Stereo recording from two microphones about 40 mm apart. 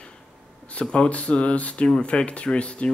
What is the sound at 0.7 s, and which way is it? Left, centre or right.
Speech, left.